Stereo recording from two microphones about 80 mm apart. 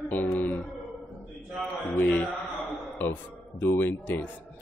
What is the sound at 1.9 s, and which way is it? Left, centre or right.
Speech, centre.